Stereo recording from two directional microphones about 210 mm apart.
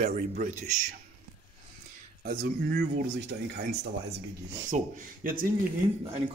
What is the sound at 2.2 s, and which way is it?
Speech, 45° right (ahead or behind).